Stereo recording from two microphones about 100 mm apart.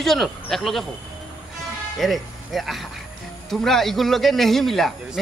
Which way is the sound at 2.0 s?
Centre (ahead or behind).